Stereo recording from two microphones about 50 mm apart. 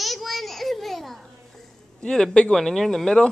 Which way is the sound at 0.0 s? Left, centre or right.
Centre.